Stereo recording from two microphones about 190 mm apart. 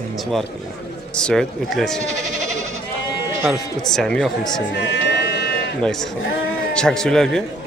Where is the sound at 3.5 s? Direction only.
5° left (ahead or behind).